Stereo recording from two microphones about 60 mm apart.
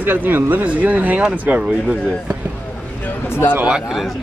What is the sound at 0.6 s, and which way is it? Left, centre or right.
Speech, right.